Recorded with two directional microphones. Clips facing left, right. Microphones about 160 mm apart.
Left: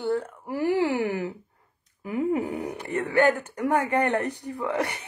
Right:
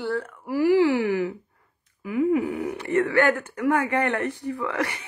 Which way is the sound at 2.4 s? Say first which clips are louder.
Right 3 dB; 20° left (ahead or behind).